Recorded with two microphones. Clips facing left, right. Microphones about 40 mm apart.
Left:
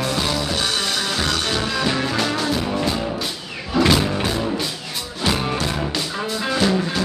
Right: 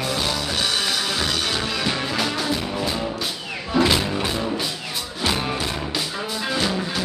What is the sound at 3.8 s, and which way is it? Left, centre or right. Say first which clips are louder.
Music: left 1 dB; centre.